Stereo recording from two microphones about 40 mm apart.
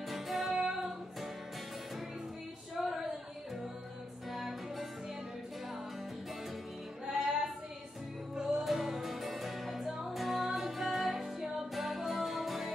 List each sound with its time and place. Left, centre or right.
0.1 s music: centre
0.5 s music: centre
0.7 s music: centre
2.7 s a sound: centre
4.3 s music: centre
7.1 s female singing: centre
8.6 s music: centre